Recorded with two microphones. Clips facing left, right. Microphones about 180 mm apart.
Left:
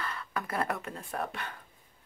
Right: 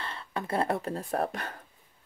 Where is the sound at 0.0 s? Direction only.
30° right (ahead or behind).